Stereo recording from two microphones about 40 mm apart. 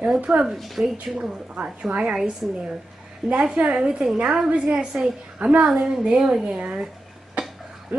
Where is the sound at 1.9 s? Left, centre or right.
Right.